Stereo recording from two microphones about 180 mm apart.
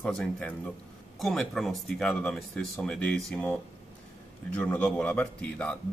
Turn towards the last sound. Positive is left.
turn(degrees=5)  # may be behind; listen again after turning